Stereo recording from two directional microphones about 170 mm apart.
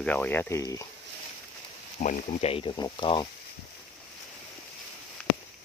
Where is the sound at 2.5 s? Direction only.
30° left (ahead or behind).